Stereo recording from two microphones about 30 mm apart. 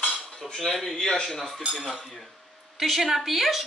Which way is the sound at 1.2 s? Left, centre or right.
Centre.